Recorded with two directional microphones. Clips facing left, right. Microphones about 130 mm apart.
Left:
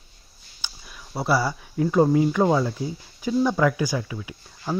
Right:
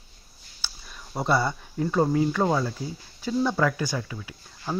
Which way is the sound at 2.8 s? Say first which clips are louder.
Left 4 dB; 15° left (ahead or behind).